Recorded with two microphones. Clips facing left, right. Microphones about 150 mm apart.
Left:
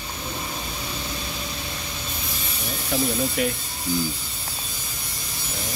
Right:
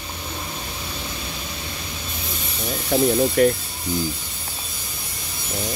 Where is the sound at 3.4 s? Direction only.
45° right (ahead or behind).